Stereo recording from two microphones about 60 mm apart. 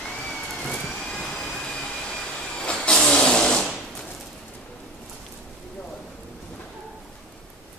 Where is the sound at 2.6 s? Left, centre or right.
Centre.